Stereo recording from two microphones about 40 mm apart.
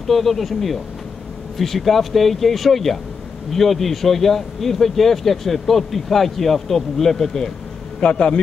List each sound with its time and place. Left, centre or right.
0.0 s speech: centre
8.0 s a man's voice: left